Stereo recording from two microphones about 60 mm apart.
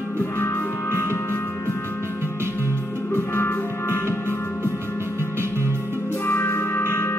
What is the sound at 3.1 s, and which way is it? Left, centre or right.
Music, left.